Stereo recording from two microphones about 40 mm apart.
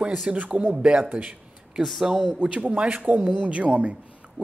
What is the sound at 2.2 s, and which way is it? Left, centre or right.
A woman's voice, right.